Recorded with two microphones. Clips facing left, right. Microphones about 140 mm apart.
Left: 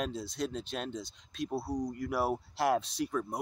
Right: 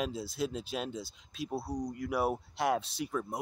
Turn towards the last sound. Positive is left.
turn(degrees=0)  # may be behind; listen again after turning